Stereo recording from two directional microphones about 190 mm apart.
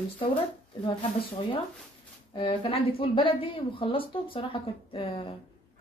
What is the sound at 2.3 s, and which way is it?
A woman's voice, 30° left (ahead or behind).